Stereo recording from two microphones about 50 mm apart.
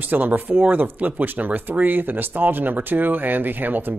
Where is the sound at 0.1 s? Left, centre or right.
Right.